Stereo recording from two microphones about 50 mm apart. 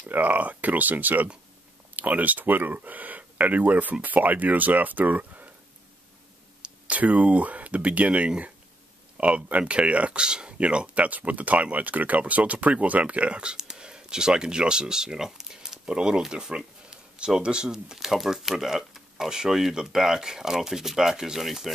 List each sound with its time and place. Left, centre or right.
0.1 s speech: right
6.6 s speech: right
11.1 s speech: right; by 21.7 s centre